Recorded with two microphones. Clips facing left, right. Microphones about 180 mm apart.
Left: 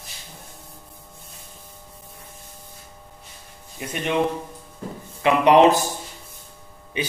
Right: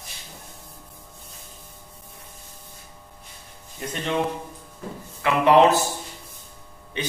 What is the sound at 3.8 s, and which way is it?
Speech, 10° left (ahead or behind).